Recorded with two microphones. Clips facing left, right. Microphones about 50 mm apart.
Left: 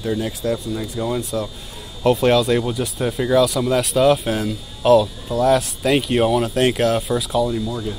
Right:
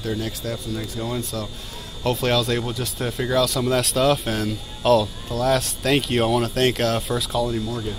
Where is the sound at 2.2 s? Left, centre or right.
Centre.